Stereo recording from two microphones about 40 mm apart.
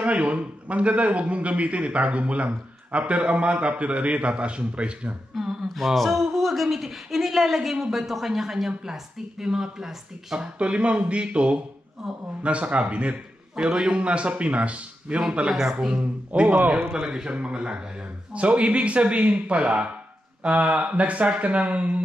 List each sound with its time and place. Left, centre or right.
0.0 s a man's voice: right
5.3 s a man's voice: centre
5.9 s a man's voice: centre
10.6 s speech: right
12.0 s a man's voice: centre
12.4 s a man's voice: right
16.9 s a man's voice: centre; by 21.9 s right